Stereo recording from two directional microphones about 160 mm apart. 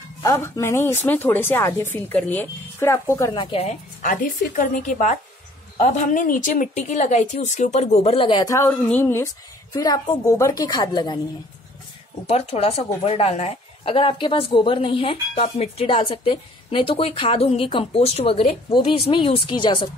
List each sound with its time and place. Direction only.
0.2 s speech: 20° left (ahead or behind)
3.3 s a woman's voice: 40° left (ahead or behind)
4.0 s a woman's voice: 55° left (ahead or behind); by 8.5 s 35° left (ahead or behind)
8.5 s a woman's voice: 20° left (ahead or behind)
12.3 s a woman's voice: 40° left (ahead or behind)